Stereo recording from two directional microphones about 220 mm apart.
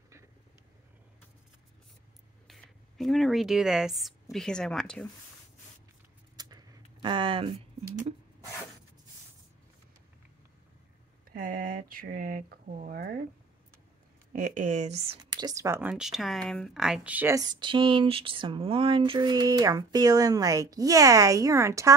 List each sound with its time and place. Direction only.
2.4 s speech: centre (ahead or behind)
6.3 s a sound: 20° right (ahead or behind)
11.2 s speech: 40° right (ahead or behind)
14.3 s speech: 35° right (ahead or behind)
15.3 s speech: 15° right (ahead or behind)